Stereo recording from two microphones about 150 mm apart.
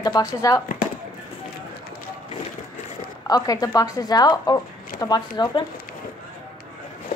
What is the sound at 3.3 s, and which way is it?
Speech, 25° left (ahead or behind).